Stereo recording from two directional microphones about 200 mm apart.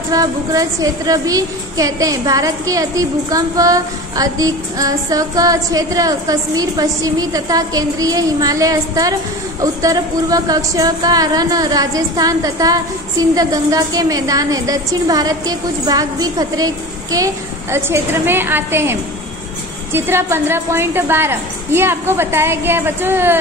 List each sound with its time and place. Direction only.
0.1 s a woman's voice: 15° right (ahead or behind)